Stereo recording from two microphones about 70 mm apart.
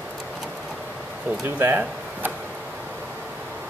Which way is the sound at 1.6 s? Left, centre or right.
Right.